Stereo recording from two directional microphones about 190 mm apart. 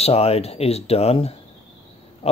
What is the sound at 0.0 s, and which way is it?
Speech, 30° left (ahead or behind).